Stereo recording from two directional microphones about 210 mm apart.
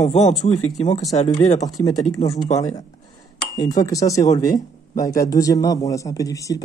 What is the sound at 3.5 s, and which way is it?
Speech, 15° left (ahead or behind).